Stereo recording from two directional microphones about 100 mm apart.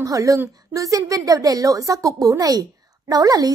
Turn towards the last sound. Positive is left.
turn(degrees=-40)  # may be behind; listen again after turning